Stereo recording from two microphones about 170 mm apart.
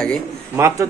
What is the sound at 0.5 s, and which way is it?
Speech, 15° right (ahead or behind).